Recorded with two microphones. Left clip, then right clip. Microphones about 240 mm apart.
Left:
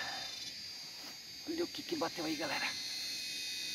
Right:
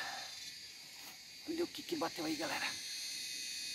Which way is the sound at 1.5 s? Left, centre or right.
Centre.